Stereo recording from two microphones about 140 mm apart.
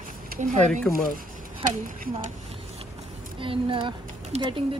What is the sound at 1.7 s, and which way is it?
Speech, 75° right (ahead or behind).